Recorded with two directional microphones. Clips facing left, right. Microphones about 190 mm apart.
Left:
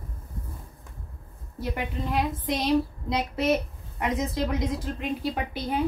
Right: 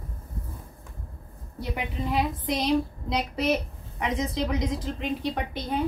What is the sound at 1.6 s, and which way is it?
A woman's voice, centre (ahead or behind).